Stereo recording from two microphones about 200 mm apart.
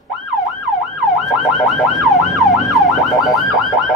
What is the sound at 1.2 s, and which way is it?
Emergency vehicle, centre (ahead or behind).